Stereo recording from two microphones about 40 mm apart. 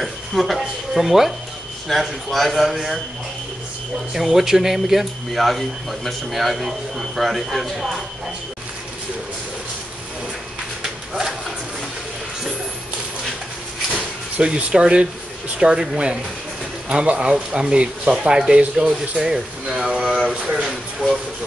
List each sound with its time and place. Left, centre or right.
0.0 s a sound: centre
2.0 s speech: centre
4.1 s speech: centre
10.8 s pigeon: centre
13.9 s speech: right
16.9 s speech: right
19.1 s speech: centre
20.2 s speech: right